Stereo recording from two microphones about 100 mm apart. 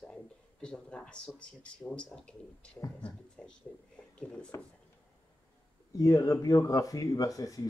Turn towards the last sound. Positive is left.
turn(degrees=35)  # may be behind; listen again after turning